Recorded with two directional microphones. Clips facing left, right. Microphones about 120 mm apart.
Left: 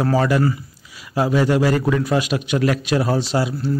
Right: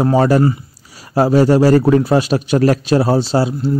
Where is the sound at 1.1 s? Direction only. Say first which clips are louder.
Right 6 dB; 40° right (ahead or behind).